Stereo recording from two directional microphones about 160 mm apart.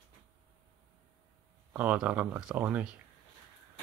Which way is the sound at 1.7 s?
10° right (ahead or behind).